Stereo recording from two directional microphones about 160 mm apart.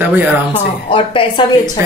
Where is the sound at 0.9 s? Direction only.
35° left (ahead or behind).